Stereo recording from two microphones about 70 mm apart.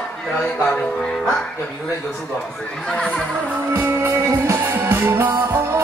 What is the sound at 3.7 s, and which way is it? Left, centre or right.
Music, right.